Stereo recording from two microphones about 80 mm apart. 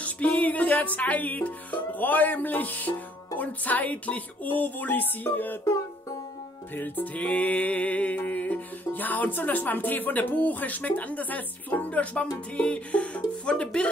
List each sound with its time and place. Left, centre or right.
0.0 s music: centre
6.7 s music: left